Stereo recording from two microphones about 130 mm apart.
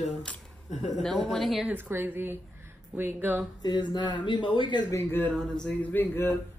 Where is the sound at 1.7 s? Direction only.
15° right (ahead or behind).